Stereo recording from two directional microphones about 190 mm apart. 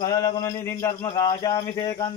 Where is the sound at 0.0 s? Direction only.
20° left (ahead or behind).